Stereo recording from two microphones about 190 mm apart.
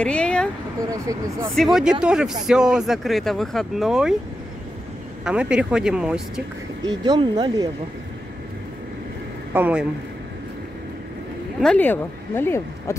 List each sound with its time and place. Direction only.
0.0 s a sound: 5° left (ahead or behind)
0.8 s speech: 15° right (ahead or behind)
1.5 s speech: centre (ahead or behind)
5.2 s speech: 5° right (ahead or behind)
6.8 s speech: 20° right (ahead or behind)
9.5 s speech: 10° right (ahead or behind)
11.6 s speech: 10° left (ahead or behind)